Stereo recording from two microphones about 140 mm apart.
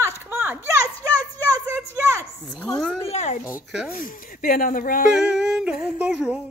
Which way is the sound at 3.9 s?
80° left.